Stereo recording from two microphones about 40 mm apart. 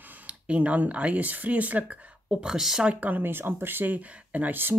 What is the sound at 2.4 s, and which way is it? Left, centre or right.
Speech, centre.